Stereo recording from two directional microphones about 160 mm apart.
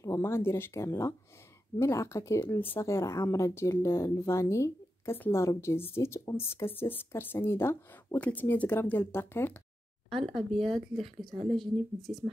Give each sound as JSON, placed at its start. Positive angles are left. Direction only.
{"t": 0.0, "sound": "speech", "side_deg": 15}
{"t": 10.0, "sound": "speech", "side_deg": 0}